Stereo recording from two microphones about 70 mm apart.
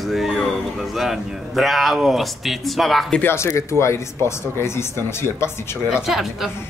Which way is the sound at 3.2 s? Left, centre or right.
Left.